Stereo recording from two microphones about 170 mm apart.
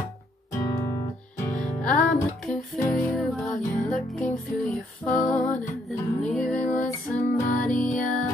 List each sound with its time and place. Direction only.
0.6 s music: 20° left (ahead or behind)
1.6 s music: 5° left (ahead or behind)